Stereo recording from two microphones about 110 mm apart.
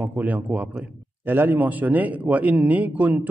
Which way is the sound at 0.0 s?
15° right (ahead or behind).